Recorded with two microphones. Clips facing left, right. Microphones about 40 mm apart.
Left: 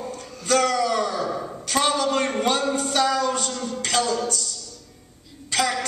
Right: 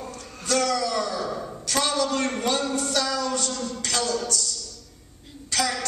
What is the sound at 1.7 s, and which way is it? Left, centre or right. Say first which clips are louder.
A man's voice: left 3 dB; left.